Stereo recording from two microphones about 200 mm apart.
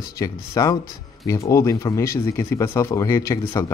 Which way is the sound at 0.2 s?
15° left (ahead or behind).